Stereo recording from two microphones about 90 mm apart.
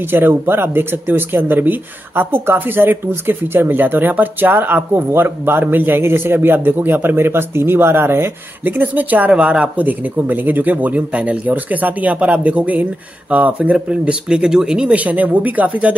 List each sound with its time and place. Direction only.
0.0 s speech: 25° right (ahead or behind)